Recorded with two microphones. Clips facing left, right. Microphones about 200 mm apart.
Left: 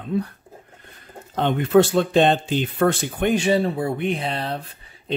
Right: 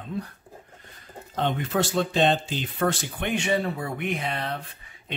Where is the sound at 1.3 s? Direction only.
60° left (ahead or behind).